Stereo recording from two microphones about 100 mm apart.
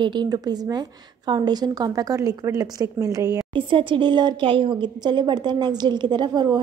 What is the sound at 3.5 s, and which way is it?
A woman's voice, 55° right (ahead or behind).